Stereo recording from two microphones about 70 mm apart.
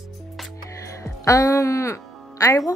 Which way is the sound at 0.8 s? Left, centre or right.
Left.